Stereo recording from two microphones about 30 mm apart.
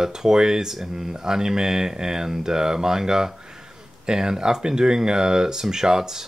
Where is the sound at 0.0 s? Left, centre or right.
Centre.